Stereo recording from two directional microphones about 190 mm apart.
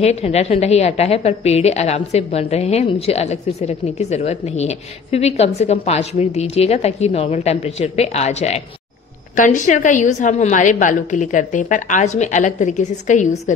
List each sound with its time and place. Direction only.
0.0 s a woman's voice: 35° left (ahead or behind)